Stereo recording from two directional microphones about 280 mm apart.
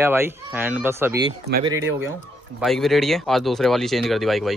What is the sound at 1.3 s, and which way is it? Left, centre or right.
Speech, right.